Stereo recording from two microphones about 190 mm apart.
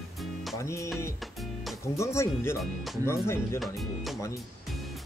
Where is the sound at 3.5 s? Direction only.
Centre (ahead or behind).